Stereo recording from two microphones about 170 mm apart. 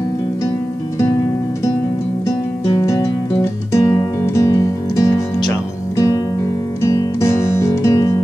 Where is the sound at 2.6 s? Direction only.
20° left (ahead or behind).